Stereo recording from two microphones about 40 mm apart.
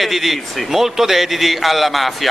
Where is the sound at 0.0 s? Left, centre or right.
Centre.